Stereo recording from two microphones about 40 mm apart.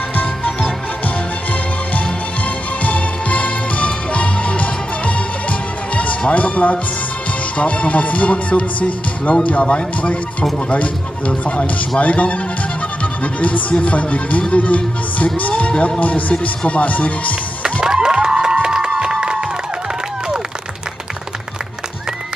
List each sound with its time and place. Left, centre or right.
0.1 s music: left
7.5 s speech: left
13.0 s music: left
15.3 s speech: left
17.8 s crowd: centre